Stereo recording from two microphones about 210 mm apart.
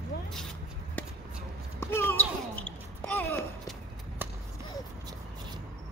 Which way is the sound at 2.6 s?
10° left (ahead or behind).